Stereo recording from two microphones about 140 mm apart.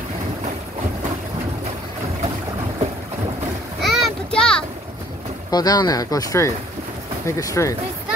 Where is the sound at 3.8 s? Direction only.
Centre (ahead or behind).